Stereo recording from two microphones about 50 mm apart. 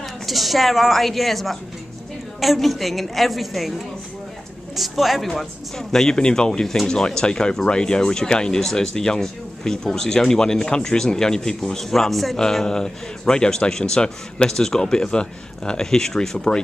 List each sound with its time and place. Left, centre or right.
0.3 s a woman's voice: centre